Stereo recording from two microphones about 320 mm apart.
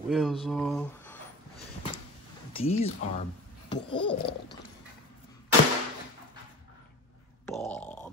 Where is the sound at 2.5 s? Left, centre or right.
Centre.